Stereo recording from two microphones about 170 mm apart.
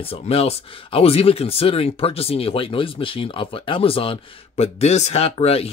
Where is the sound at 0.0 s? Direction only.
35° left (ahead or behind).